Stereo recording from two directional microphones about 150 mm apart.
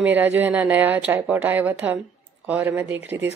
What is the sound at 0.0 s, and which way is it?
A woman's voice, 10° right (ahead or behind).